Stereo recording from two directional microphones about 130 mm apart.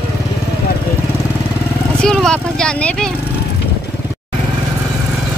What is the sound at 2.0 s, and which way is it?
Speech, 5° left (ahead or behind).